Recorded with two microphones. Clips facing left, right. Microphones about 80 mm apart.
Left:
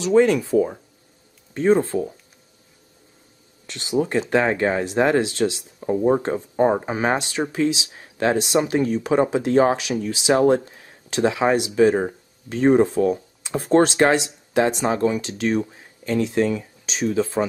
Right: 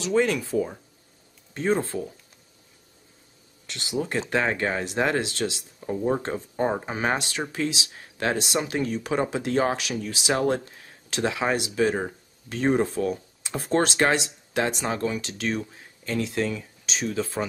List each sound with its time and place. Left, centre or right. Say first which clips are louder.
0.0 s speech: left 7 dB; centre
1.9 s speech: left 7 dB; left
3.6 s speech: left 7 dB; left
13.9 s speech: left 5 dB; centre
14.5 s speech: left 6 dB; centre